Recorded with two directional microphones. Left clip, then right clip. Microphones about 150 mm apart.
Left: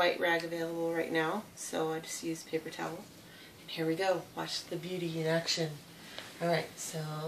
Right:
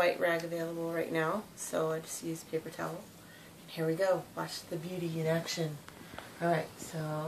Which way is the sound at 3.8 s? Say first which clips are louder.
Even; 15° left (ahead or behind).